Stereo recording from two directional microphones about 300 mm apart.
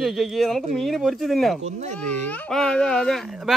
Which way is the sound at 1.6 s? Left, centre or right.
Right.